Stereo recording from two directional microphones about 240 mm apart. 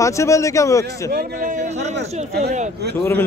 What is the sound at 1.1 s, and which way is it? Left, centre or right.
Speech, right.